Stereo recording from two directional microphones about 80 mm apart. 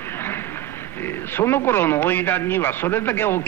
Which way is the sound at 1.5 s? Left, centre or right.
Left.